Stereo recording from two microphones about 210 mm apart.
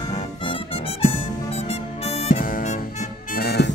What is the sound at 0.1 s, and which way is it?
Music, 30° left (ahead or behind).